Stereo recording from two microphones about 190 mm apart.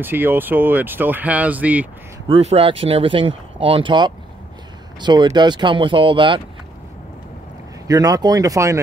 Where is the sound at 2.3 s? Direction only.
30° right (ahead or behind).